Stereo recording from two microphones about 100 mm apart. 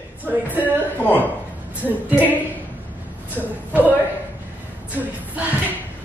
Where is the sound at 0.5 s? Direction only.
15° right (ahead or behind).